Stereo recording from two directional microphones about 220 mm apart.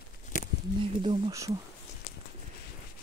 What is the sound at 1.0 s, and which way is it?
Speech, 20° right (ahead or behind).